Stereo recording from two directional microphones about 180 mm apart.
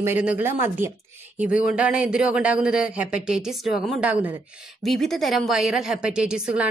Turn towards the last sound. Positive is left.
turn(degrees=-5)  # may be behind; listen again after turning